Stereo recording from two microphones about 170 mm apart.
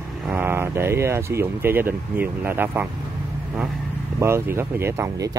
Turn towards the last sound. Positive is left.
turn(degrees=-20)  # may be behind; listen again after turning